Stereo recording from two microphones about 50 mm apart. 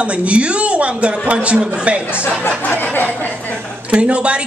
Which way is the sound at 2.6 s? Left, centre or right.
Left.